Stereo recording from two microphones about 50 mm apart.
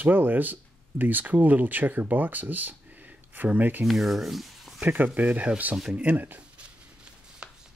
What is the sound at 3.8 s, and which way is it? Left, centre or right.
Speech, centre.